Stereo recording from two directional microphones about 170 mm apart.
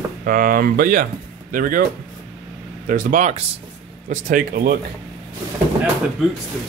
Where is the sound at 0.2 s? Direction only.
55° right (ahead or behind).